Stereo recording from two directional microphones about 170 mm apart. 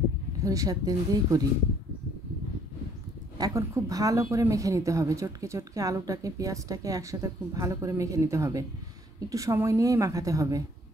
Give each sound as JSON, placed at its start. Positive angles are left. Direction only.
{"t": 0.4, "sound": "speech", "side_deg": -20}
{"t": 3.3, "sound": "speech", "side_deg": -20}